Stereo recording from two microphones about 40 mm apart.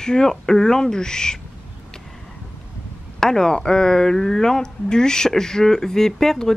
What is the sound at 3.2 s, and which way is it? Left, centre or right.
Speech, centre.